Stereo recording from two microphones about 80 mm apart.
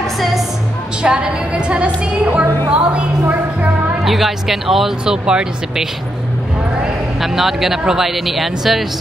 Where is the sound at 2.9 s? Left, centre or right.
Centre.